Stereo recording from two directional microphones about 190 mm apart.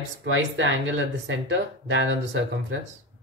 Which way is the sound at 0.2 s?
80° right.